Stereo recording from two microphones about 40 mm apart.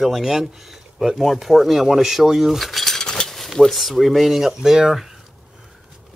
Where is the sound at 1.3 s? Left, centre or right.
Centre.